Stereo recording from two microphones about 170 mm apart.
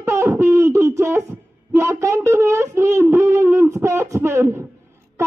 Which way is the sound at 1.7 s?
15° right (ahead or behind).